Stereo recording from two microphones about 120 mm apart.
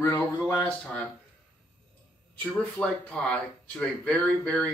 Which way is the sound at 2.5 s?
10° left (ahead or behind).